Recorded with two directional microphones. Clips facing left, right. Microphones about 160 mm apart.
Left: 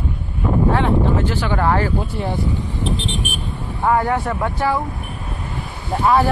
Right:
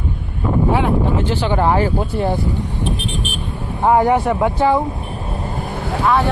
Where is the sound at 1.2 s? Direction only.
25° right (ahead or behind).